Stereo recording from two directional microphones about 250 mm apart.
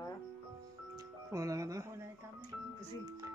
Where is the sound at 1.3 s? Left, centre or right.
Centre.